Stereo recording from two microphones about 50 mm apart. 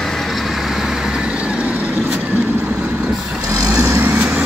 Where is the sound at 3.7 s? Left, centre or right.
Right.